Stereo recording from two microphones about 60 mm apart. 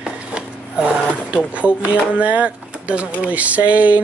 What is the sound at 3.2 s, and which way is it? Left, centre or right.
Speech, right.